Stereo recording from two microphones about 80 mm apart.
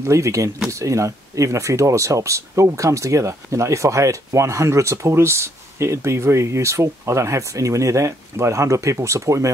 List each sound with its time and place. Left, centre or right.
0.0 s speech: right